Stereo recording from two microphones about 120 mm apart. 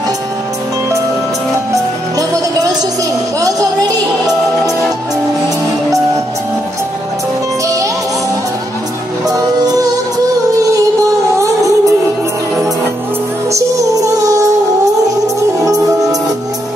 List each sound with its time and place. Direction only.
1.7 s music: 30° right (ahead or behind)
7.6 s music: 25° right (ahead or behind)
9.3 s music: 30° right (ahead or behind)
11.3 s music: 25° right (ahead or behind)
14.2 s music: 30° right (ahead or behind)
15.6 s music: 30° right (ahead or behind)